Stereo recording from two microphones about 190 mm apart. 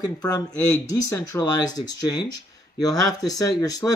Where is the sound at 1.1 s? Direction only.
20° left (ahead or behind).